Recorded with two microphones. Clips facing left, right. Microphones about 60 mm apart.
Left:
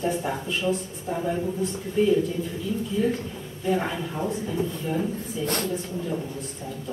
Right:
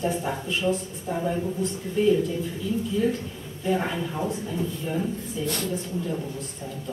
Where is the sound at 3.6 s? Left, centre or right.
Centre.